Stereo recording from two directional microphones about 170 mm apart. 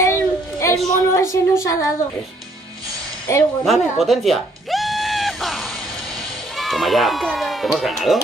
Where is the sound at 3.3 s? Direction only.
15° left (ahead or behind).